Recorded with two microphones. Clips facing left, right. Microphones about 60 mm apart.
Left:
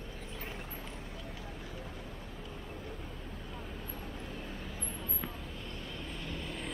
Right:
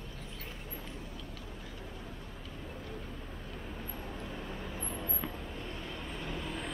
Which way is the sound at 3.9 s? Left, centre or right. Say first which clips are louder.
Right 1 dB; right.